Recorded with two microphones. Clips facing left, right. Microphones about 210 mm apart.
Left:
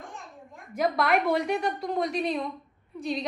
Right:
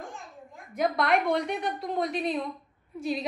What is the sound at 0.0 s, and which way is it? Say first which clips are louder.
A child's voice: right 1 dB; centre (ahead or behind).